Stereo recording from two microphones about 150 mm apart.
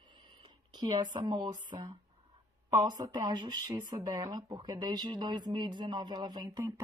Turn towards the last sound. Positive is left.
turn(degrees=-25)  # may be behind; listen again after turning